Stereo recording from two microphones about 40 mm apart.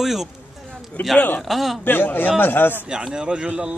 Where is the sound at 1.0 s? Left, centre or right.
Left.